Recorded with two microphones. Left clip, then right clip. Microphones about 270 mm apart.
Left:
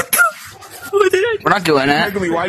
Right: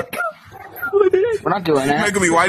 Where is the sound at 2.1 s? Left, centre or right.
Right.